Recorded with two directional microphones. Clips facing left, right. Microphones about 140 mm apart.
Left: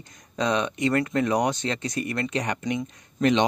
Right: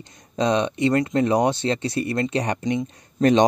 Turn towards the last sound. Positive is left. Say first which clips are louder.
# right 5 dB
turn(degrees=-40)  # may be behind; listen again after turning